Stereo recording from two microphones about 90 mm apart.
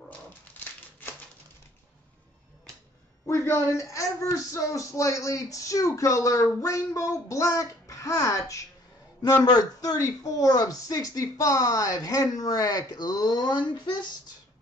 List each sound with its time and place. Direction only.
3.4 s speech: 30° left (ahead or behind)
9.2 s speech: 45° left (ahead or behind)